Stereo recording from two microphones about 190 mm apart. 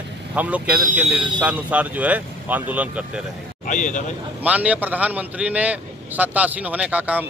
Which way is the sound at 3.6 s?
40° left (ahead or behind).